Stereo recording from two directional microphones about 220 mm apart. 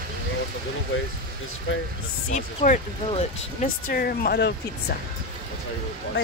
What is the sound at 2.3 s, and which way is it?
Speech, 30° left (ahead or behind).